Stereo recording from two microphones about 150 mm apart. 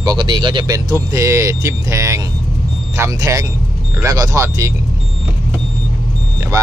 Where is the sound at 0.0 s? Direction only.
30° right (ahead or behind).